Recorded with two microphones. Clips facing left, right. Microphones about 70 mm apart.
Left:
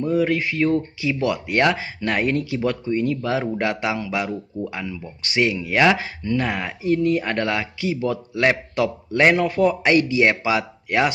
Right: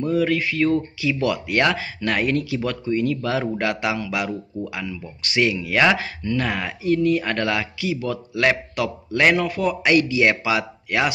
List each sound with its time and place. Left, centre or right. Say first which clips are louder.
0.0 s speech: even; left